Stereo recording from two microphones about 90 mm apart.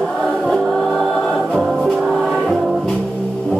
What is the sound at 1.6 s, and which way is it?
Music, 5° right (ahead or behind).